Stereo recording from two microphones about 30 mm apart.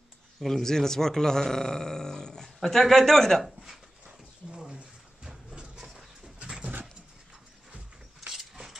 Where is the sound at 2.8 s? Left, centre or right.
Centre.